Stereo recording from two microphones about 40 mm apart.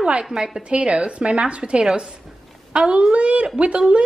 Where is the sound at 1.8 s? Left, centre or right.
Centre.